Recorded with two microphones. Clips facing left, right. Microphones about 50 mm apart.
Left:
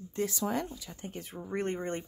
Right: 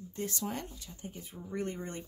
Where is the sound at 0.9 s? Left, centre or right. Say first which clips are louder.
Left 4 dB; left.